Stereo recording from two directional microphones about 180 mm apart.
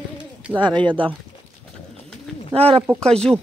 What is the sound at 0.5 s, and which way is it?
Speech, 25° right (ahead or behind).